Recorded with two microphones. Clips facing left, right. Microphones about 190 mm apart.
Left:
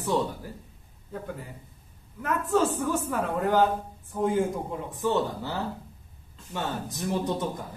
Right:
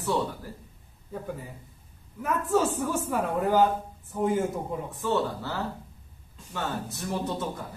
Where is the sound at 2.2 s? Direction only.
10° right (ahead or behind).